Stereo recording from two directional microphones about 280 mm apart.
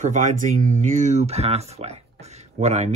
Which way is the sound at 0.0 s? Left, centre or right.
Right.